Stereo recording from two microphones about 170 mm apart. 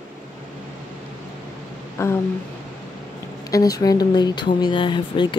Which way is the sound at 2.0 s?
15° left (ahead or behind).